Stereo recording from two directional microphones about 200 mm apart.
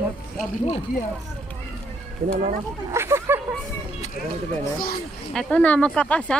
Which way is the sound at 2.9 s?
15° right (ahead or behind).